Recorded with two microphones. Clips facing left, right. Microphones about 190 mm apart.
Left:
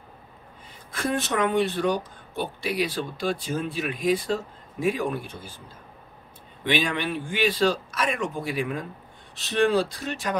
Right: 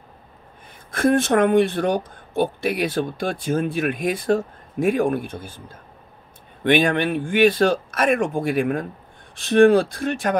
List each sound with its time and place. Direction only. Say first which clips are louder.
0.9 s speech: right 9 dB; 50° right (ahead or behind)
6.6 s speech: right 7 dB; 55° right (ahead or behind)